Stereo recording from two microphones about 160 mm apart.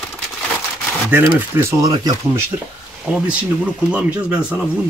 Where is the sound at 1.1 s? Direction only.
10° right (ahead or behind).